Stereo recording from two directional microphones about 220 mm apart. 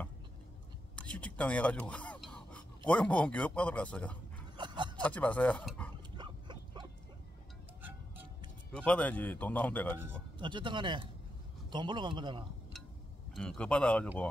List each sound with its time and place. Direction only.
0.9 s pant: 5° left (ahead or behind)
2.9 s a man's voice: 5° left (ahead or behind)
4.6 s a sound: 20° right (ahead or behind)
5.0 s speech: 5° left (ahead or behind)
6.1 s pig: 20° right (ahead or behind)
8.7 s speech: 5° left (ahead or behind)
10.4 s a man's voice: 20° right (ahead or behind)
13.3 s a man's voice: 5° left (ahead or behind)